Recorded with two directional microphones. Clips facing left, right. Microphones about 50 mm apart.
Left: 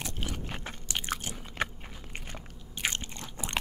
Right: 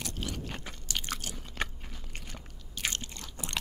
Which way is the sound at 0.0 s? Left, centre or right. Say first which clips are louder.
Even; left.